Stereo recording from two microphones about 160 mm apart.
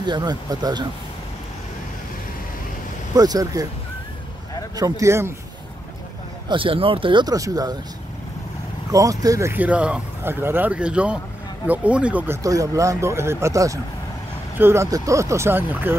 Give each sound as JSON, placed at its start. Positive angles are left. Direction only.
{"t": 0.0, "sound": "speech", "side_deg": -30}
{"t": 3.2, "sound": "speech", "side_deg": -25}
{"t": 4.7, "sound": "speech", "side_deg": -20}
{"t": 6.5, "sound": "speech", "side_deg": -35}
{"t": 8.9, "sound": "speech", "side_deg": -20}
{"t": 12.4, "sound": "speech", "side_deg": -20}